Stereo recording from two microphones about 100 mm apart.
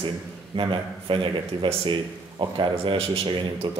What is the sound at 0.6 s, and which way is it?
Speech, 55° right (ahead or behind).